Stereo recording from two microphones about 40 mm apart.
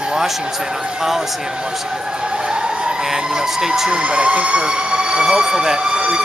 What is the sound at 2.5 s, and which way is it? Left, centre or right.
Speech, centre.